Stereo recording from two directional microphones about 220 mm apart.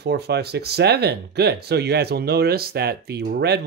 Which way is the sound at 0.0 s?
50° right (ahead or behind).